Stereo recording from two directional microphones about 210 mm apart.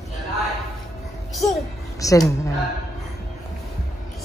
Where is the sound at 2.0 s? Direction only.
15° left (ahead or behind).